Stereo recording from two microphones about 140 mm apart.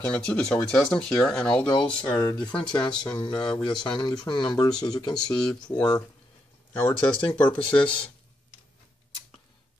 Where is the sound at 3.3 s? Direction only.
5° left (ahead or behind).